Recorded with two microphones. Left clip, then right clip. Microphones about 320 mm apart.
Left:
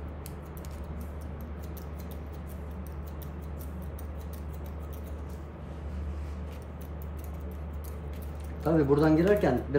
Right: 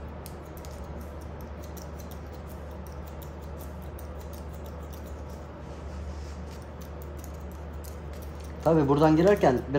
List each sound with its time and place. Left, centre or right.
8.6 s speech: centre